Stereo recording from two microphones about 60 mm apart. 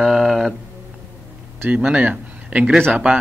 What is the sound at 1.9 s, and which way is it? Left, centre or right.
Speech, right.